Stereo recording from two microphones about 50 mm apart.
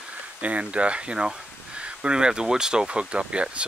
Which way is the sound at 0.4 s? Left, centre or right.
Right.